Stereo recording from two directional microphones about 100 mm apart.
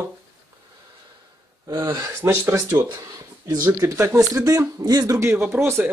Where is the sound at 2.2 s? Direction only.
25° right (ahead or behind).